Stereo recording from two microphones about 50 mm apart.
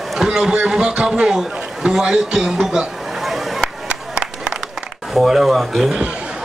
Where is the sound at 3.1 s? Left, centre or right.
Centre.